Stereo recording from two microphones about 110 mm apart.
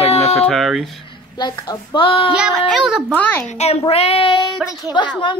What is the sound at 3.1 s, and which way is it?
Speech, 20° left (ahead or behind).